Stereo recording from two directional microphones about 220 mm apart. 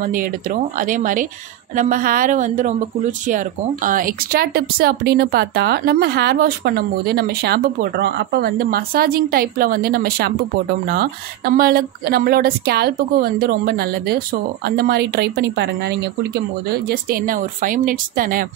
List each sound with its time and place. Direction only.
0.0 s speech: 40° right (ahead or behind)